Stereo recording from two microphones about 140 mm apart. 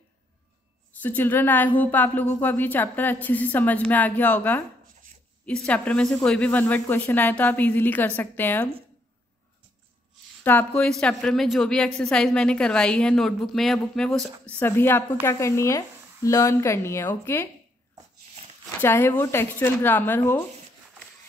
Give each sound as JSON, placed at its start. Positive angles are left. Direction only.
{"t": 1.0, "sound": "a woman's voice", "side_deg": 15}
{"t": 10.4, "sound": "a woman's voice", "side_deg": 15}
{"t": 14.6, "sound": "a woman's voice", "side_deg": 15}
{"t": 18.8, "sound": "a woman's voice", "side_deg": 15}